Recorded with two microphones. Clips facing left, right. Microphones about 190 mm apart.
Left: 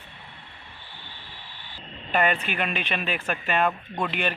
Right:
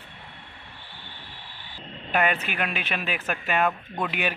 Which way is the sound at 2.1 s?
5° right (ahead or behind).